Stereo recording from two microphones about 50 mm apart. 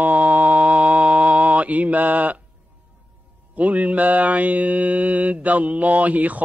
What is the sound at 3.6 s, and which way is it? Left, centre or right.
Mantra, right.